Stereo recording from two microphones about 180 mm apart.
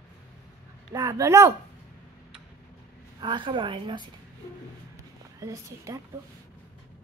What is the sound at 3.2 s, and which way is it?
Speech, 25° right (ahead or behind).